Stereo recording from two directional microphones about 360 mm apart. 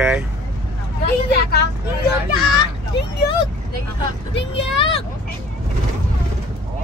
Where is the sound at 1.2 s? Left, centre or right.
Left.